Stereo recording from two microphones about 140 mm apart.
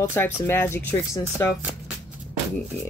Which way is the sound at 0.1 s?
15° left (ahead or behind).